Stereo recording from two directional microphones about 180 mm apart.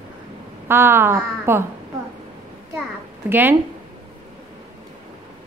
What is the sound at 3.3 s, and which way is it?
Speech, 10° right (ahead or behind).